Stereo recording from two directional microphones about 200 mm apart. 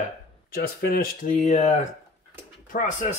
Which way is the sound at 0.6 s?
50° left (ahead or behind).